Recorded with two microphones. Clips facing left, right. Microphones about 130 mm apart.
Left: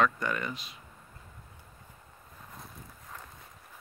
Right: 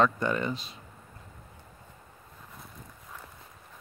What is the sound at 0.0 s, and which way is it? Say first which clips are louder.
Speech: right 3 dB; 25° right (ahead or behind).